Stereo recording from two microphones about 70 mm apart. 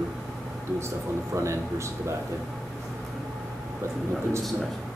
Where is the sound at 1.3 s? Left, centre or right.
Right.